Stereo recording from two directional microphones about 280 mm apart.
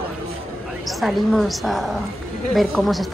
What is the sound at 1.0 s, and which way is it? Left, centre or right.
A woman's voice, centre.